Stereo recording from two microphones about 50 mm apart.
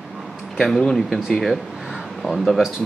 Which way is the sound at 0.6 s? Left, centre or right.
Centre.